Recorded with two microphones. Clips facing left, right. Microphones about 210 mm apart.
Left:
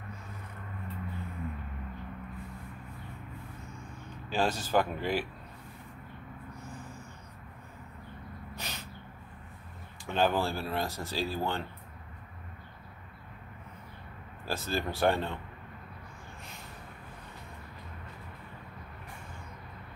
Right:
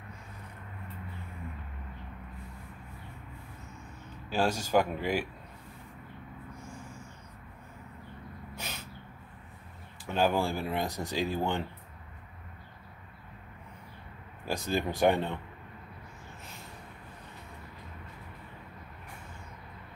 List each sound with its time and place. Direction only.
4.3 s speech: 10° right (ahead or behind)
8.5 s snort: 10° right (ahead or behind)
10.0 s speech: 10° right (ahead or behind)
14.4 s speech: 15° right (ahead or behind)